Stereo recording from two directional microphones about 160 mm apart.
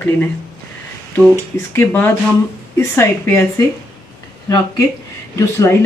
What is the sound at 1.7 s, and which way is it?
Speech, 15° left (ahead or behind).